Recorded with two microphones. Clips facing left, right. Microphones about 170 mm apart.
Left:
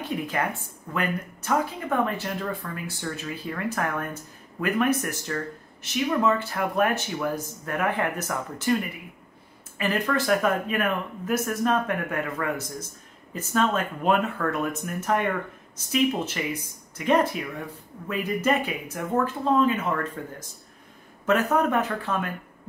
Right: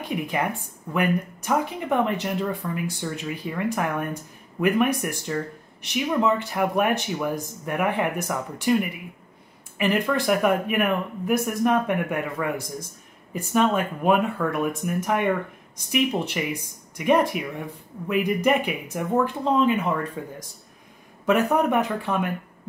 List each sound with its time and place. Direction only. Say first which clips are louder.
0.0 s a woman's voice: right 1 dB; 15° right (ahead or behind)
9.8 s a woman's voice: right 3 dB; 15° right (ahead or behind)
16.4 s a woman's voice: right 2 dB; 15° right (ahead or behind)